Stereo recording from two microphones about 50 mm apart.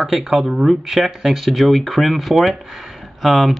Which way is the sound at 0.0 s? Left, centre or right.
Centre.